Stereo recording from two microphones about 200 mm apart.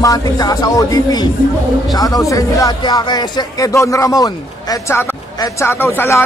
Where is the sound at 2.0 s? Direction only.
15° left (ahead or behind).